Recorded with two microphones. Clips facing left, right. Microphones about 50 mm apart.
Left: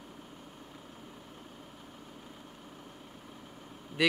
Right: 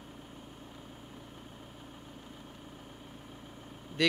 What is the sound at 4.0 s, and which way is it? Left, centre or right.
Vehicle, centre.